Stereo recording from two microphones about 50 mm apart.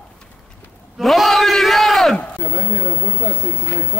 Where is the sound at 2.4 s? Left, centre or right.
Right.